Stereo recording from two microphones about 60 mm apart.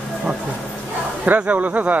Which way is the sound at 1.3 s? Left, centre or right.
Right.